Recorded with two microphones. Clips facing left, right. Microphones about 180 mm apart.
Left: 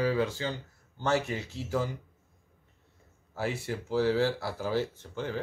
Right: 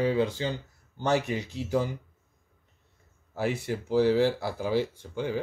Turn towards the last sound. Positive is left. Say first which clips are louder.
# right 4 dB
turn(degrees=-15)  # may be behind; listen again after turning